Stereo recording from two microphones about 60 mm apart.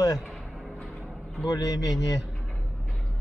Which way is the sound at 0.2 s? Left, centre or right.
Centre.